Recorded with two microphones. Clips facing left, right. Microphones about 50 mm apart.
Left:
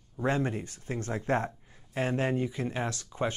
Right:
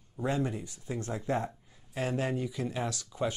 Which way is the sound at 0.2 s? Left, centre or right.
Left.